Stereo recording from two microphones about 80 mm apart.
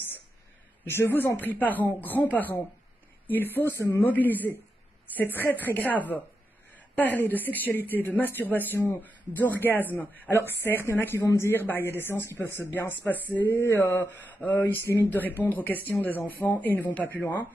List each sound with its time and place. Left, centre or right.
0.8 s speech: left
4.1 s speech: left
11.1 s speech: left
11.6 s speech: left